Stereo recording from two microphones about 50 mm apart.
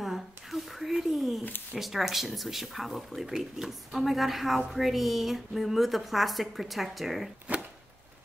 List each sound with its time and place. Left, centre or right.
0.0 s a sound: centre
1.8 s speech: centre
7.5 s chopping: right